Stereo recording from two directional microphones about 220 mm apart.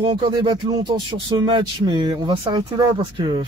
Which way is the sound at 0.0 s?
20° right (ahead or behind).